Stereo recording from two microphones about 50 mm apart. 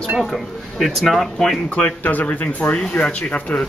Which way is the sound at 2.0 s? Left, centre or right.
Left.